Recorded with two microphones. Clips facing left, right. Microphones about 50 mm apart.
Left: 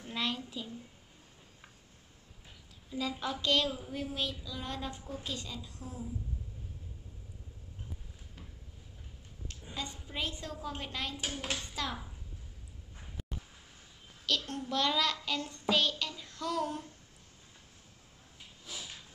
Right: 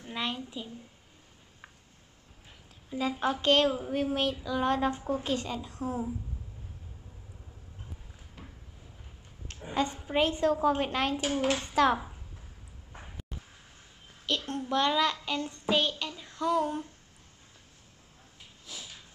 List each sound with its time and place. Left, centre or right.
0.0 s a child's voice: centre
2.9 s speech: right
9.5 s speech: right
14.2 s a child's voice: right
14.6 s child singing: centre